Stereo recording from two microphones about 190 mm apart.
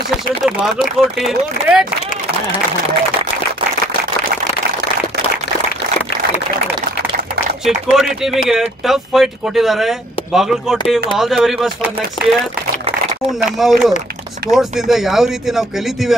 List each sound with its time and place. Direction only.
1.2 s speech: 5° right (ahead or behind)
7.6 s speech: centre (ahead or behind)
12.2 s speech: 25° left (ahead or behind)
13.6 s speech: centre (ahead or behind)